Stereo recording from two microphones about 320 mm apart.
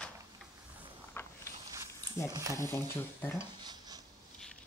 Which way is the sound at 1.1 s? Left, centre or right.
Centre.